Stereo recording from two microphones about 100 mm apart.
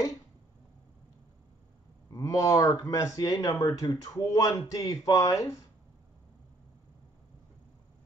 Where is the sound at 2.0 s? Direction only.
30° left (ahead or behind).